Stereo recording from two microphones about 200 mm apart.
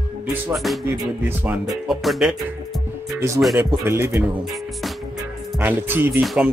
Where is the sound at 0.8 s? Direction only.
10° right (ahead or behind).